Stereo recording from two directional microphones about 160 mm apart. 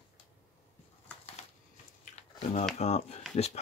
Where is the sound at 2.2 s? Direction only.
40° left (ahead or behind).